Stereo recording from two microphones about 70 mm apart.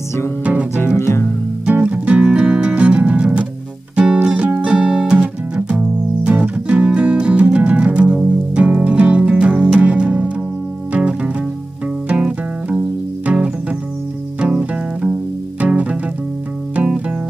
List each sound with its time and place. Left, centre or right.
0.4 s music: right
0.7 s music: left
1.7 s music: centre